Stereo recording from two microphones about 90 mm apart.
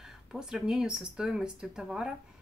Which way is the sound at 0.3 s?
5° right (ahead or behind).